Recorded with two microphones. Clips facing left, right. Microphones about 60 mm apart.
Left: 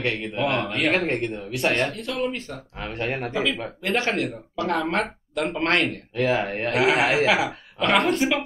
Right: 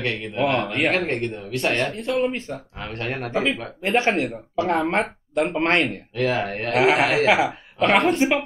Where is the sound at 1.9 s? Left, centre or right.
Right.